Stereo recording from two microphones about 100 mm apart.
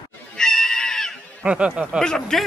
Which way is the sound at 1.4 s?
10° right (ahead or behind).